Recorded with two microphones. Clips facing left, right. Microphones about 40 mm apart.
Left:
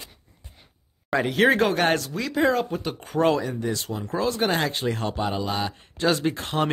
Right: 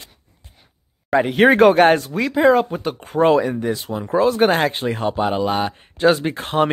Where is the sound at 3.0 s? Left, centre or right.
Centre; by 4.7 s right.